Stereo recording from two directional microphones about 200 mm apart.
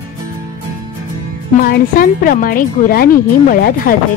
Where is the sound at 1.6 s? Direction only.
45° left (ahead or behind).